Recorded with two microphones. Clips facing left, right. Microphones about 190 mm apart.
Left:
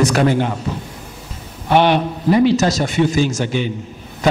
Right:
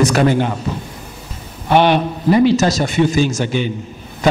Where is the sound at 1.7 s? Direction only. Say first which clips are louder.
Right 1 dB; 10° right (ahead or behind).